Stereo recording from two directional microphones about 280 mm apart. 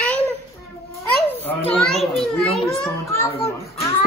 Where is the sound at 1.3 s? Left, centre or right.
Centre.